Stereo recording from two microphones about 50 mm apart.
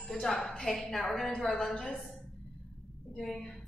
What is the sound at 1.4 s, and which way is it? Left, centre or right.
Speech, centre.